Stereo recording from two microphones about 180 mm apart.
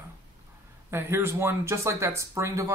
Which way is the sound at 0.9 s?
15° right (ahead or behind).